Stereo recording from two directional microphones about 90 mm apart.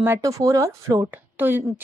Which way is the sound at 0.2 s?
35° right (ahead or behind).